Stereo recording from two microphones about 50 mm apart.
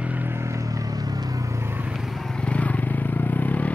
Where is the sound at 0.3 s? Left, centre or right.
Right.